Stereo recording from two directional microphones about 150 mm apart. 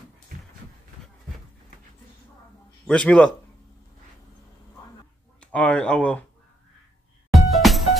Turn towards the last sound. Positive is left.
turn(degrees=0)  # may be behind; listen again after turning